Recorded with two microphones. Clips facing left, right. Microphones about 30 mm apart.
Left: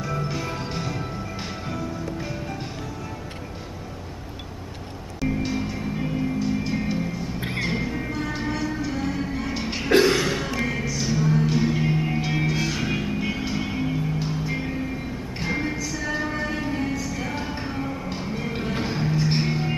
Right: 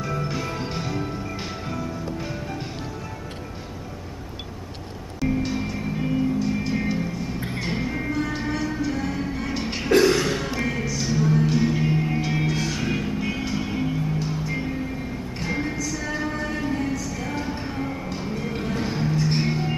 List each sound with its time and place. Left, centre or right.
0.0 s music: centre
5.2 s music: centre
9.8 s cough: centre
10.1 s a sound: centre
10.5 s music: centre
18.2 s music: centre